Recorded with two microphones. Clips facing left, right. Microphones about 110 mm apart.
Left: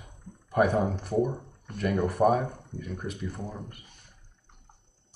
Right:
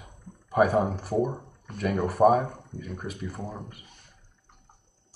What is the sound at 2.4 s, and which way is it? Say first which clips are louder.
Speech: right 1 dB; 20° right (ahead or behind).